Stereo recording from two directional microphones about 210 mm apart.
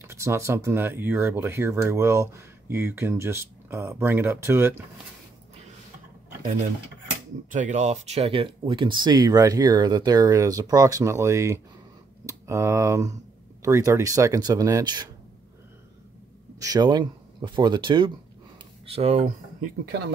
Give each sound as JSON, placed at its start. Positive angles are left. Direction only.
{"t": 0.0, "sound": "speech", "side_deg": -10}
{"t": 7.5, "sound": "speech", "side_deg": -35}
{"t": 16.5, "sound": "speech", "side_deg": -15}